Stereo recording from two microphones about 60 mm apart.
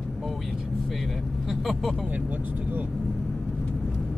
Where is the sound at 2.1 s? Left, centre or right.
Right.